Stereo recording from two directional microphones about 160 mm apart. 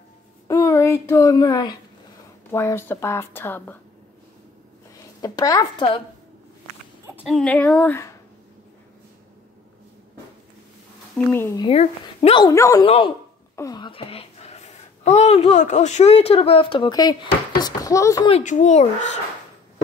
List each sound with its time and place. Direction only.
0.5 s a child's voice: 20° left (ahead or behind)
5.2 s a woman's voice: 20° left (ahead or behind)
7.2 s speech: 5° left (ahead or behind)
11.3 s speech: 15° left (ahead or behind)
11.6 s speech: 40° left (ahead or behind)
12.4 s a woman's voice: 20° left (ahead or behind)
12.8 s speech: 35° left (ahead or behind)
13.6 s speech: 25° left (ahead or behind)
18.3 s speech: 50° left (ahead or behind)